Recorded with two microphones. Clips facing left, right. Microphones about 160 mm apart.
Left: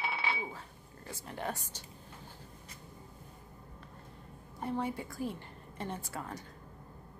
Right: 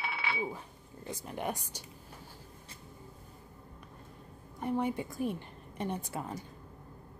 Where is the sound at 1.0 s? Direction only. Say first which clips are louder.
Right 3 dB; 20° right (ahead or behind).